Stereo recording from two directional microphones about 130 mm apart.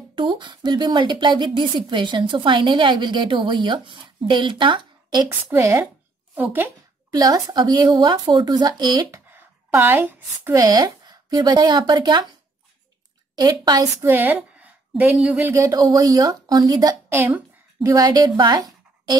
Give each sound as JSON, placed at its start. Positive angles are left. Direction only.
{"t": 0.1, "sound": "a woman's voice", "side_deg": -40}
{"t": 5.5, "sound": "speech", "side_deg": -20}
{"t": 7.1, "sound": "a woman's voice", "side_deg": -30}
{"t": 9.3, "sound": "a woman's voice", "side_deg": -15}
{"t": 10.6, "sound": "speech", "side_deg": -35}
{"t": 13.4, "sound": "a woman's voice", "side_deg": -30}
{"t": 14.0, "sound": "a woman's voice", "side_deg": -15}
{"t": 15.5, "sound": "a woman's voice", "side_deg": -25}